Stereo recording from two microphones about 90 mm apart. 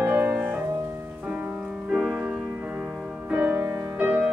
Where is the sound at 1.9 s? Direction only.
10° right (ahead or behind).